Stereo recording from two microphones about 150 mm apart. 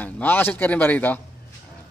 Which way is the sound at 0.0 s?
10° left (ahead or behind).